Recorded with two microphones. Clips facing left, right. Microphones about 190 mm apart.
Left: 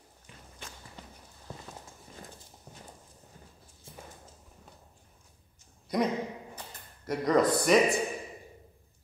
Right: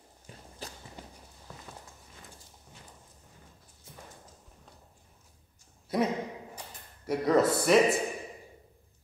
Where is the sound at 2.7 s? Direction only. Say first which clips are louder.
Left 4 dB; 40° left (ahead or behind).